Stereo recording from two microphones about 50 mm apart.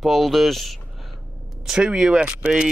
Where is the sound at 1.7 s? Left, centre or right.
Centre.